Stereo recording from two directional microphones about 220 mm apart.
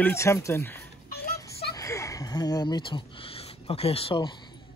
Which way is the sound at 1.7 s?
15° left (ahead or behind).